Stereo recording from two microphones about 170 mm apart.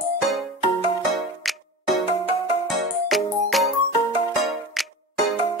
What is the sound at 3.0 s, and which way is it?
Music, centre (ahead or behind).